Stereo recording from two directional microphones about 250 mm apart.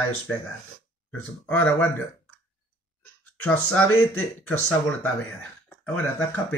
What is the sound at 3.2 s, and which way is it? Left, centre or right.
Speech, centre.